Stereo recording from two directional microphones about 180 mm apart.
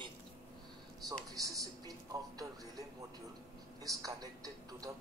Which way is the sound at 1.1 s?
20° right (ahead or behind).